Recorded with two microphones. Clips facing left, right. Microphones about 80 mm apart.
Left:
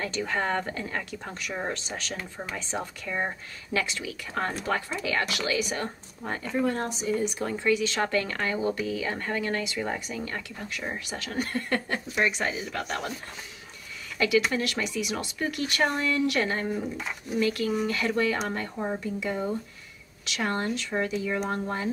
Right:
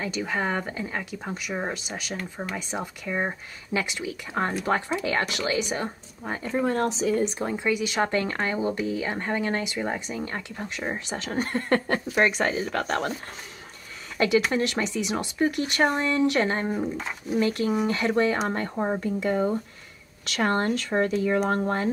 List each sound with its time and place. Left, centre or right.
0.0 s a woman's voice: centre
2.1 s speech: centre
2.5 s speech: centre
5.9 s a woman's voice: centre
6.8 s speech: right
7.2 s speech: right
7.4 s speech: centre; by 11.8 s right
11.9 s speech: right
14.1 s speech: right